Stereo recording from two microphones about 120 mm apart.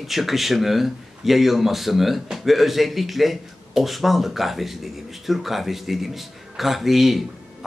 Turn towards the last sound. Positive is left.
turn(degrees=0)  # may be behind; listen again after turning